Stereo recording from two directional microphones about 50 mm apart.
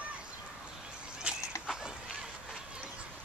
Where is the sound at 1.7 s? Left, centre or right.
Centre.